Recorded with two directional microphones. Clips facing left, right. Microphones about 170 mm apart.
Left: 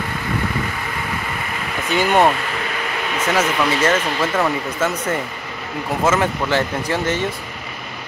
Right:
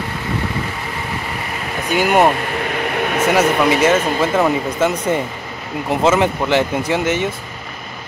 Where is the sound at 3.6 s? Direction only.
15° right (ahead or behind).